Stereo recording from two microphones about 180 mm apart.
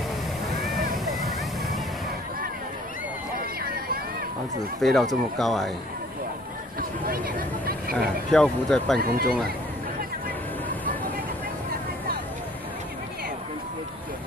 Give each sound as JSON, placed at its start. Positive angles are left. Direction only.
{"t": 0.6, "sound": "vehicle", "side_deg": 0}
{"t": 3.3, "sound": "a sound", "side_deg": -55}
{"t": 4.7, "sound": "speech", "side_deg": 0}
{"t": 6.8, "sound": "a sound", "side_deg": -55}
{"t": 8.3, "sound": "speech", "side_deg": 5}
{"t": 9.0, "sound": "speech", "side_deg": -55}